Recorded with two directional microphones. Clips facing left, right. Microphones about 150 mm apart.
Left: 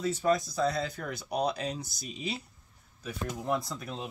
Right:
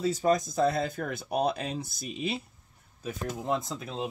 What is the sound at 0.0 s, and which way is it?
Speech, 35° right (ahead or behind).